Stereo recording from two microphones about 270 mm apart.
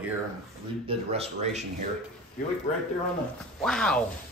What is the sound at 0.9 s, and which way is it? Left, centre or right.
Speech, right.